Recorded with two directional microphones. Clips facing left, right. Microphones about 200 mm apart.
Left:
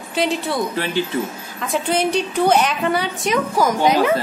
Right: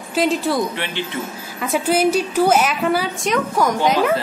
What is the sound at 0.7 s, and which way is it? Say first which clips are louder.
Speech: left 5 dB; 40° left (ahead or behind).